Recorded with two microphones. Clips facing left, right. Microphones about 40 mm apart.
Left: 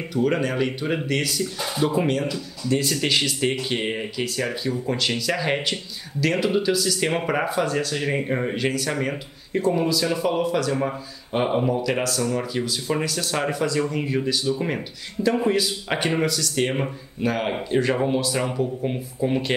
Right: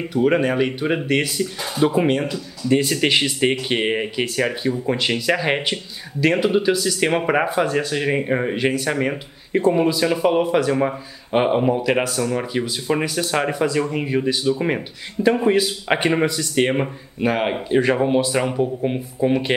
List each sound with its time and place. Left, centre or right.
0.1 s speech: centre
15.4 s speech: right